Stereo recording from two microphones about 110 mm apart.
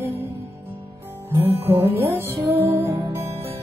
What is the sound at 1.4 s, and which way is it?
Music, 20° right (ahead or behind).